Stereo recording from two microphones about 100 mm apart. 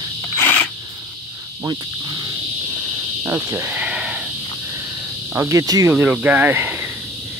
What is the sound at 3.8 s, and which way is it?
Sheep, 10° right (ahead or behind).